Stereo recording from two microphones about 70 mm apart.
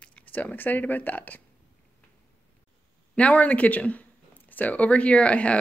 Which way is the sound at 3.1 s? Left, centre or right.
Centre.